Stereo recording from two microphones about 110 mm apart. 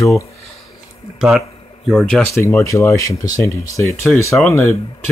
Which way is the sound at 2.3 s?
25° left (ahead or behind).